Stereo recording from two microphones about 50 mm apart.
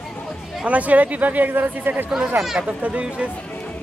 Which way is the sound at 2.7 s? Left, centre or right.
Right.